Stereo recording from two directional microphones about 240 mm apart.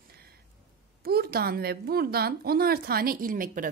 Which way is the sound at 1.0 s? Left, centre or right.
Right.